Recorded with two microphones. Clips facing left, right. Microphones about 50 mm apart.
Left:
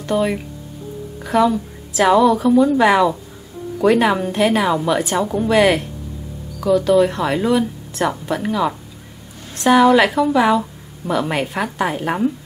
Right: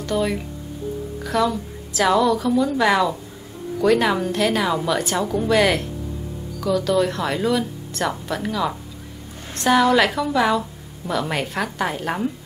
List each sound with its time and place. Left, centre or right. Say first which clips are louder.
0.0 s a woman's voice: left 3 dB; centre